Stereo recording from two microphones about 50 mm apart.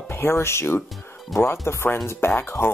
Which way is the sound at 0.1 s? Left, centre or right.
Left.